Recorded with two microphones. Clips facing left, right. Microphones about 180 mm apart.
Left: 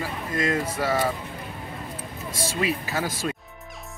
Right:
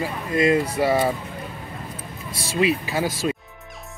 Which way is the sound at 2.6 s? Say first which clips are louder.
Right 6 dB; 15° right (ahead or behind).